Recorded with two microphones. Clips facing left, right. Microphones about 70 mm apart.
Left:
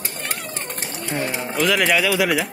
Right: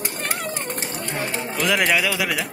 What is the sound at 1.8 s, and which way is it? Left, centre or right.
Speech, centre.